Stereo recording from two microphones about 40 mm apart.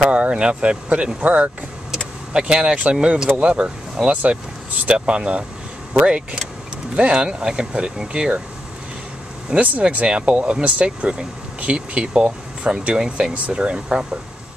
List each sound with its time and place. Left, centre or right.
0.0 s speech: right
2.3 s speech: centre
4.1 s speech: right
9.6 s speech: right